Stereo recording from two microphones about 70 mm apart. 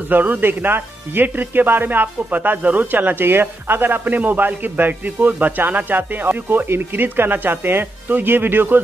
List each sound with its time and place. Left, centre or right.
0.1 s speech: right